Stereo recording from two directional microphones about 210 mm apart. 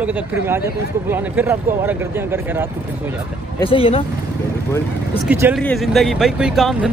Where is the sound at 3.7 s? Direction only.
25° left (ahead or behind).